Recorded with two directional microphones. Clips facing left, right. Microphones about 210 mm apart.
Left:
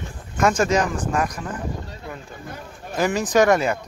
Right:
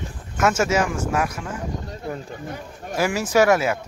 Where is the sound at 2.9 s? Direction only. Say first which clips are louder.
Left 1 dB; 10° right (ahead or behind).